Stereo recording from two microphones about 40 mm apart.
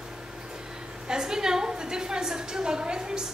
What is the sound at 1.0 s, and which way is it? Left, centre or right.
A woman's voice, centre.